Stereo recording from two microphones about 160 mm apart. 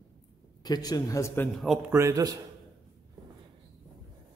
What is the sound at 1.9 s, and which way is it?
Speech, 15° right (ahead or behind).